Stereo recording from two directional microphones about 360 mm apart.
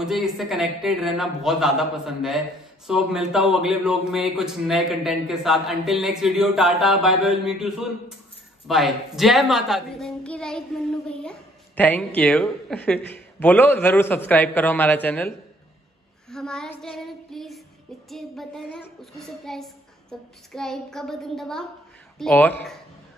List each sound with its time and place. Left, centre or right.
0.0 s a child's voice: centre